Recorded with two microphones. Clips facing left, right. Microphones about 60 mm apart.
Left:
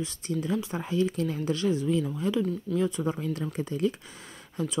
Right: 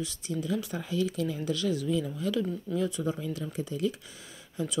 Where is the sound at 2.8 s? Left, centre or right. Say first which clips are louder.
Left 2 dB; left.